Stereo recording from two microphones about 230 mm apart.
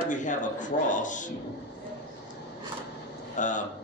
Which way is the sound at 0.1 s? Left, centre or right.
Left.